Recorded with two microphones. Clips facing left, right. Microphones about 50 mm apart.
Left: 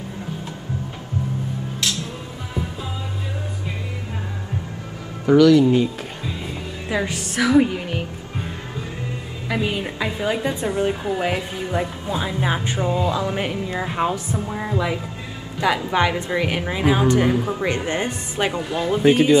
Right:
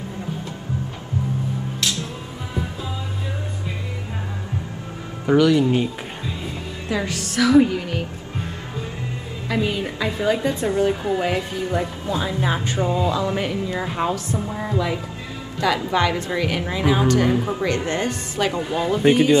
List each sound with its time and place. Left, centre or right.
5.4 s speech: centre
6.9 s a woman's voice: left
9.5 s a woman's voice: centre
14.5 s music: centre
15.6 s speech: left
17.3 s speech: centre
17.6 s speech: centre
18.6 s speech: centre
18.9 s speech: centre